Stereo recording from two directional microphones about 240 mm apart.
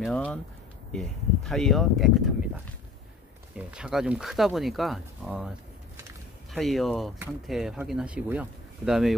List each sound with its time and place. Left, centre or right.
0.0 s speech: centre
6.5 s speech: centre